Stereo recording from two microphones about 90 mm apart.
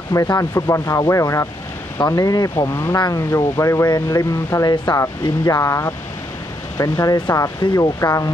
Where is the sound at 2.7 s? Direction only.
25° left (ahead or behind).